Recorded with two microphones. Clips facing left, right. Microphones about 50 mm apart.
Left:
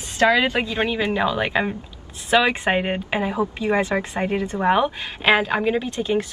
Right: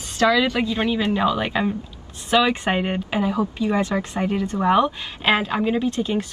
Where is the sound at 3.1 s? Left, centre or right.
Left.